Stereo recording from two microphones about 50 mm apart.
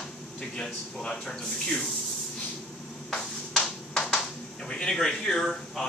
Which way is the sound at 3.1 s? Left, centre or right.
Centre.